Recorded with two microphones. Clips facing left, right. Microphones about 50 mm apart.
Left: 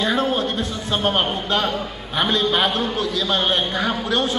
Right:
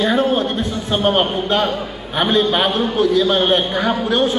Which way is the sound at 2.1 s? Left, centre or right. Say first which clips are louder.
Right 4 dB; right.